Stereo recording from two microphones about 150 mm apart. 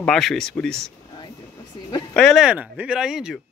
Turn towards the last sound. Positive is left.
turn(degrees=-5)  # may be behind; listen again after turning